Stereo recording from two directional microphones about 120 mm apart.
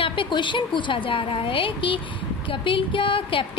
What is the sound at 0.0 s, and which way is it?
A woman's voice, 45° left (ahead or behind).